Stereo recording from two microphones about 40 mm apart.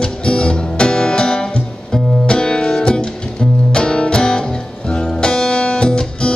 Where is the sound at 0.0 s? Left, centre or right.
Left.